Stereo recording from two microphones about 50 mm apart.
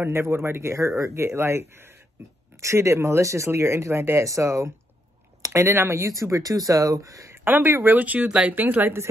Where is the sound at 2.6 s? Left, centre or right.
Right.